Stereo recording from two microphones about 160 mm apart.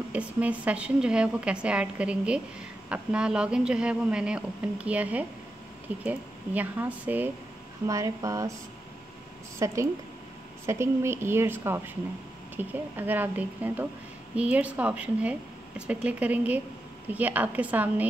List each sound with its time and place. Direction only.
0.1 s a woman's voice: 10° right (ahead or behind)
9.6 s a woman's voice: 20° right (ahead or behind)